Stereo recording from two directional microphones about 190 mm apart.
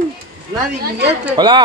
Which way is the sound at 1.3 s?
25° right (ahead or behind).